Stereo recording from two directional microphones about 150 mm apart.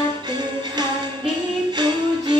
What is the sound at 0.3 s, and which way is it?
Music, 30° right (ahead or behind).